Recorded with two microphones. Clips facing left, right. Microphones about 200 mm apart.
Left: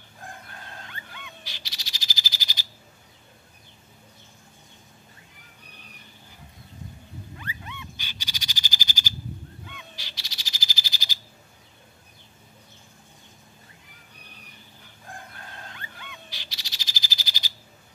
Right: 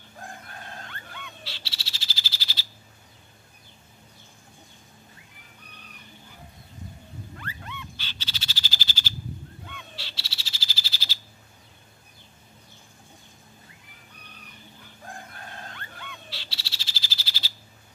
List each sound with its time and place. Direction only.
1.4 s frog: 15° left (ahead or behind)
7.3 s frog: 15° left (ahead or behind)
15.7 s frog: 15° left (ahead or behind)